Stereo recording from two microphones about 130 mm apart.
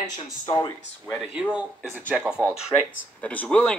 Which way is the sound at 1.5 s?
15° right (ahead or behind).